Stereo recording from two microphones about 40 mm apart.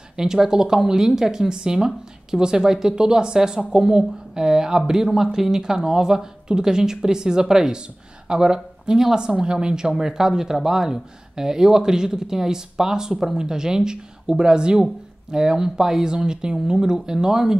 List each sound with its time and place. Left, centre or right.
0.2 s speech: centre